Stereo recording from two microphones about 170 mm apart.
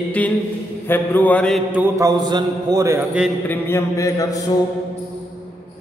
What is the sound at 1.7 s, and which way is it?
Mantra, 10° right (ahead or behind).